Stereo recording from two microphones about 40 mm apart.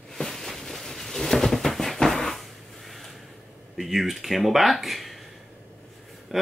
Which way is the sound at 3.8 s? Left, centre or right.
Centre.